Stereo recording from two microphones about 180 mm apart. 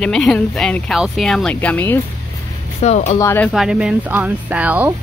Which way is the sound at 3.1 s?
10° left (ahead or behind).